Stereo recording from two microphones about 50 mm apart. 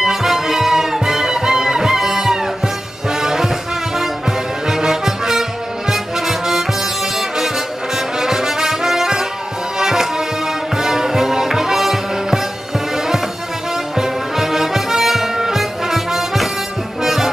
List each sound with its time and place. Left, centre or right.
0.0 s music: centre
7.2 s brass instrument: centre
9.8 s music: centre
13.9 s music: centre
17.0 s brass instrument: centre